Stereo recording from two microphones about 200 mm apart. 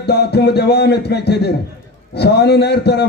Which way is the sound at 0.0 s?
55° left (ahead or behind).